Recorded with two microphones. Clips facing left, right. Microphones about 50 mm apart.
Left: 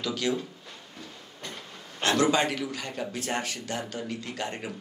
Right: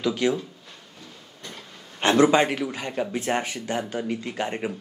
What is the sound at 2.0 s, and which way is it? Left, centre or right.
Speech, right.